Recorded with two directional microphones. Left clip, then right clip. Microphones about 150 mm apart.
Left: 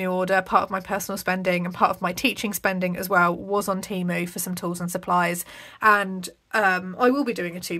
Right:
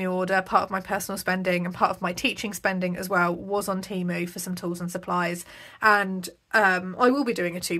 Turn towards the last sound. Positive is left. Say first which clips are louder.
# right 1 dB
turn(degrees=0)  # may be behind; listen again after turning